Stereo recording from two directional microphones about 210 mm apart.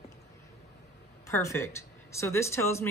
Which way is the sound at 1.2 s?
15° left (ahead or behind).